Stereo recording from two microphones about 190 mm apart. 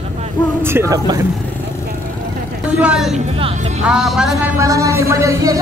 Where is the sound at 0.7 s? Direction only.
15° right (ahead or behind).